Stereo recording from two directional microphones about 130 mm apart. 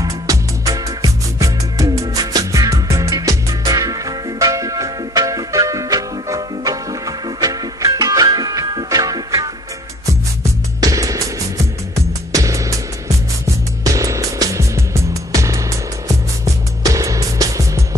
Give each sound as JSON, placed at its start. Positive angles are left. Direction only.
{"t": 0.0, "sound": "music", "side_deg": -25}
{"t": 10.8, "sound": "music", "side_deg": -25}
{"t": 13.9, "sound": "music", "side_deg": -25}